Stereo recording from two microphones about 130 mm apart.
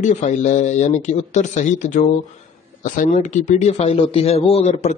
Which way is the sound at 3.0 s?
70° left (ahead or behind).